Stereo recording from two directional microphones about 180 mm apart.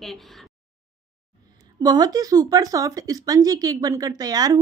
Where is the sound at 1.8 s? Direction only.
20° right (ahead or behind).